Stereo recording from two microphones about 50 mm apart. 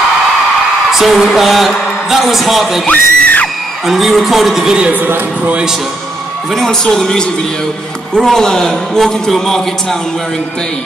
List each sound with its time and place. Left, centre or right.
0.9 s a man's voice: centre
2.9 s screaming: left
3.8 s a man's voice: centre
4.6 s speech: centre
5.0 s a man's voice: right
6.5 s a man's voice: centre